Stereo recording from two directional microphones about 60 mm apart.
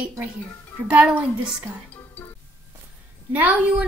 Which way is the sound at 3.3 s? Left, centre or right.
Right.